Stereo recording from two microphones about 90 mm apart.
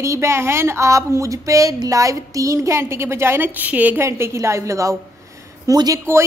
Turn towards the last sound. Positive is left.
turn(degrees=-45)  # may be behind; listen again after turning